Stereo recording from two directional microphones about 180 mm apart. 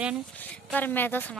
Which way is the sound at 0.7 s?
10° left (ahead or behind).